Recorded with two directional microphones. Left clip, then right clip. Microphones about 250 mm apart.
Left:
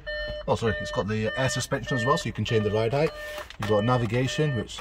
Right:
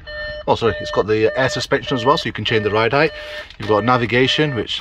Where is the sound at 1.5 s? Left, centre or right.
Centre.